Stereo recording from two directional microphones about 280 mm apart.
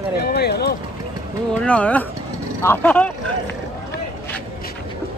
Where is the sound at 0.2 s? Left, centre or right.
Left.